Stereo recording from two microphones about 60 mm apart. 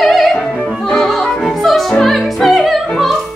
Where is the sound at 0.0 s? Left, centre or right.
Centre.